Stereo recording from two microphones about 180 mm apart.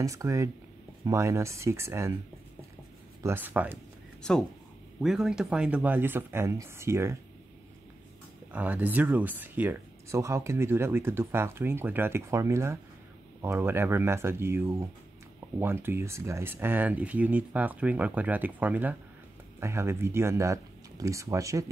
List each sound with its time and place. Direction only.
0.0 s speech: 15° right (ahead or behind)
3.2 s speech: 10° right (ahead or behind)
4.2 s speech: 5° left (ahead or behind); by 7.2 s 15° right (ahead or behind)
8.5 s speech: 10° right (ahead or behind)